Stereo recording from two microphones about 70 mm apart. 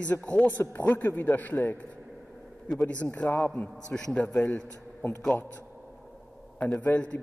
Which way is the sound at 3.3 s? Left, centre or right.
Left.